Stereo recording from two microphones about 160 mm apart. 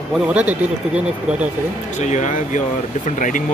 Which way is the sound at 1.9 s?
50° left (ahead or behind).